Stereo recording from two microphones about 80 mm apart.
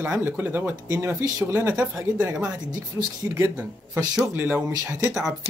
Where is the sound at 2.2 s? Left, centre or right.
Centre.